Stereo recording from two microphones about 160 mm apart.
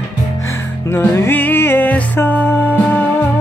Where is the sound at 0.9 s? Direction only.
15° left (ahead or behind).